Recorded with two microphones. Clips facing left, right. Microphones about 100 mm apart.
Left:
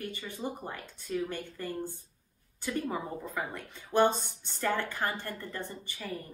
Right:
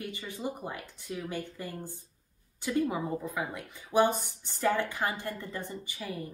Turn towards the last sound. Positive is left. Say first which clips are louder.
# right 1 dB
turn(degrees=-15)  # may be behind; listen again after turning